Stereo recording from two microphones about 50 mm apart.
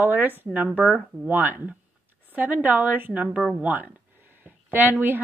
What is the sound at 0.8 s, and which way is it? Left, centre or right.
Speech, centre.